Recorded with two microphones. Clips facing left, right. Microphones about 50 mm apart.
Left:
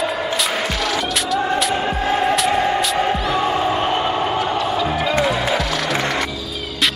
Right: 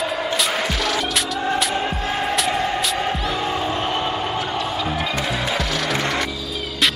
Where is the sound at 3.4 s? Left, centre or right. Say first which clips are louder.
Left 4 dB; centre.